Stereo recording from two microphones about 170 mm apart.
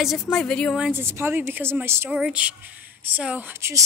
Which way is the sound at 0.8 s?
15° right (ahead or behind).